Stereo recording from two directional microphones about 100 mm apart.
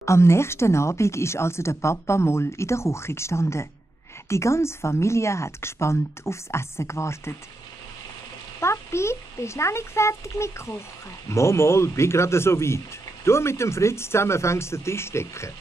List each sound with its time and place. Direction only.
0.0 s speech: 30° left (ahead or behind)
8.5 s a child's voice: 25° left (ahead or behind)